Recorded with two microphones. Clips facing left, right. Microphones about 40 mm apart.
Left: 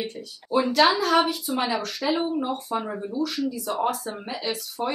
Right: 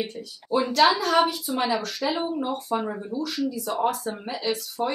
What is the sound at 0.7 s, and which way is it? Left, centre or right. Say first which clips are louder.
A woman's voice: even; centre.